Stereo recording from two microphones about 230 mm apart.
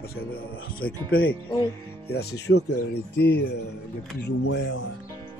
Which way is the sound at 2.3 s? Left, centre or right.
Left.